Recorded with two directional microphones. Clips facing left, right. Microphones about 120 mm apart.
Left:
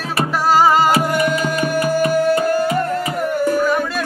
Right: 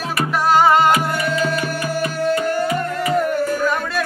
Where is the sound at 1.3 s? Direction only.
35° left (ahead or behind).